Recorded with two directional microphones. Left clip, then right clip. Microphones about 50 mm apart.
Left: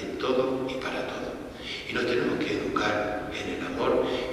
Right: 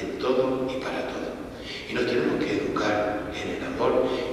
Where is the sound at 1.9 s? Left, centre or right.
Left.